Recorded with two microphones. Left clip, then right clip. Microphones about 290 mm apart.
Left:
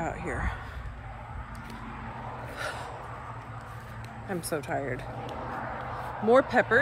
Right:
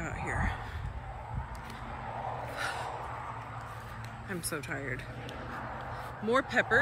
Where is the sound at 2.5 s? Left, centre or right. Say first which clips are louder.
Left 2 dB; centre.